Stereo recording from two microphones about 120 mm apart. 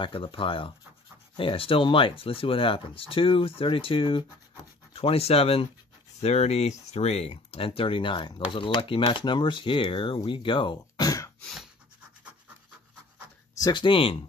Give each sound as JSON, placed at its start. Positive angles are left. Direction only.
{"t": 0.0, "sound": "speech", "side_deg": 45}
{"t": 13.6, "sound": "speech", "side_deg": 35}